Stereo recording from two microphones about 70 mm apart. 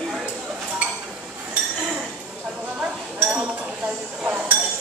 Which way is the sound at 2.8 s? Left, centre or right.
Right.